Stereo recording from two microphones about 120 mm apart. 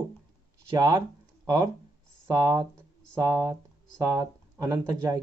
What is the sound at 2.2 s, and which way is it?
Speech, 30° right (ahead or behind).